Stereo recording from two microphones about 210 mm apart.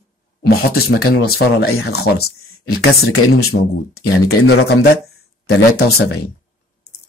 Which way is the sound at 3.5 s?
60° left (ahead or behind).